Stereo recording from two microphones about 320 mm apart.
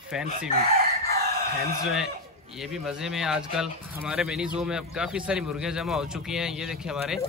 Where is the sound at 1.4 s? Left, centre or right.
Right.